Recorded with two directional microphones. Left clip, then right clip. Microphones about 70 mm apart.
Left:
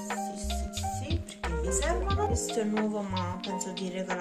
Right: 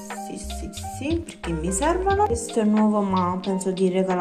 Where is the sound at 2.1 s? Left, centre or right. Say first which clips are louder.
Right 10 dB; centre.